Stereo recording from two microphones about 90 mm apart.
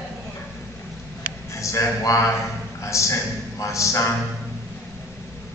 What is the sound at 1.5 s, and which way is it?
A man's voice, 35° left (ahead or behind).